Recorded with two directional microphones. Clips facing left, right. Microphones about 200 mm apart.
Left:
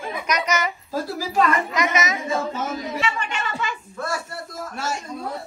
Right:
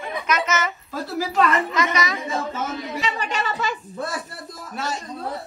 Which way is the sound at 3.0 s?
35° right (ahead or behind).